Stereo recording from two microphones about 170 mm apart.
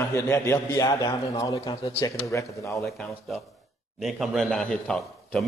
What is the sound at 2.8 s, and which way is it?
A man's voice, 5° left (ahead or behind).